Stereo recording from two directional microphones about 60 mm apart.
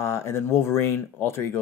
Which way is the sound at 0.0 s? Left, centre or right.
Left.